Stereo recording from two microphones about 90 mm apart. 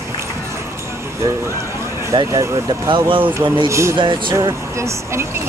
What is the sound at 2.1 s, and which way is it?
Speech, 50° right (ahead or behind).